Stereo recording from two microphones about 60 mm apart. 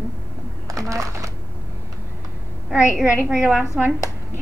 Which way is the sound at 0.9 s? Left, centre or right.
Right.